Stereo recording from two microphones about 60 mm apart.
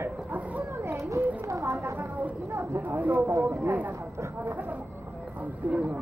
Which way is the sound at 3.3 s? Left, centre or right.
Right.